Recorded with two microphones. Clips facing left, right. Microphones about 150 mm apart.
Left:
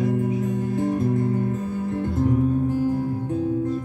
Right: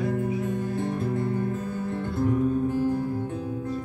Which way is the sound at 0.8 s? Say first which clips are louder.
Left 5 dB; 40° left (ahead or behind).